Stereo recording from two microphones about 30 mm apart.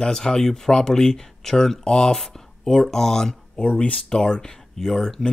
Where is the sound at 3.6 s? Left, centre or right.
Left.